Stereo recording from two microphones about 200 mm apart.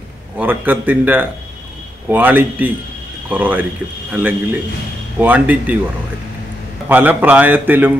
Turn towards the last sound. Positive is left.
turn(degrees=-10)  # may be behind; listen again after turning